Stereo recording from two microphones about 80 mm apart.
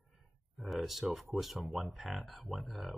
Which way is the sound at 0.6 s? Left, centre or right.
Centre.